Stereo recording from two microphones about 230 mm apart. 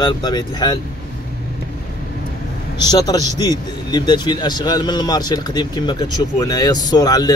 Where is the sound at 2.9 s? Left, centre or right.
Centre.